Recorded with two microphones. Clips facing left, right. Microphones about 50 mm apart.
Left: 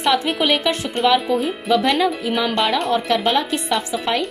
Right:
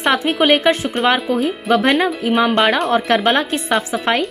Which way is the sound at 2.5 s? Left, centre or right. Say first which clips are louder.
Right 4 dB; right.